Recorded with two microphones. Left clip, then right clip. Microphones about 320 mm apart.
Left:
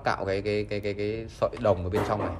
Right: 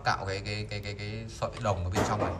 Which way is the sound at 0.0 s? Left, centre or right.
Centre.